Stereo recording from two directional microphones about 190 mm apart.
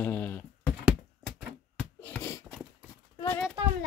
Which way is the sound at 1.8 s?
10° left (ahead or behind).